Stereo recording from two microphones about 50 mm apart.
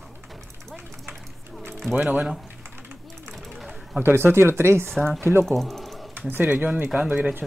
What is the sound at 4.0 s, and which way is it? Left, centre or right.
Speech, right.